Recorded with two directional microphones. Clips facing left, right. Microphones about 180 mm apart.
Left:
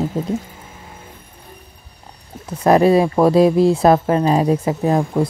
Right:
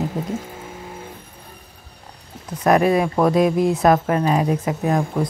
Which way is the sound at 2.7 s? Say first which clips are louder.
Left 4 dB; 30° left (ahead or behind).